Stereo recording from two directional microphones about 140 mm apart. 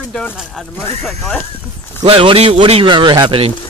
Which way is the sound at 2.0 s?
40° right (ahead or behind).